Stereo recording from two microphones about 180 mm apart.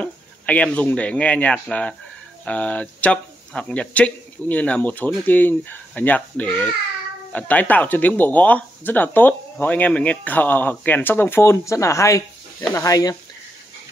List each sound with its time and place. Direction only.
0.0 s speech: 10° left (ahead or behind)